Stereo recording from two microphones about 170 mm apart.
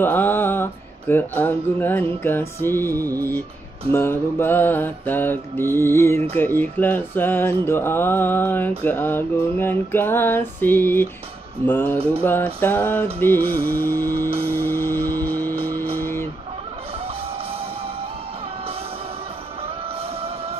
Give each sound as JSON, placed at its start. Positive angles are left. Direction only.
{"t": 0.0, "sound": "speech", "side_deg": 10}
{"t": 13.7, "sound": "music", "side_deg": -60}
{"t": 14.0, "sound": "music", "side_deg": -20}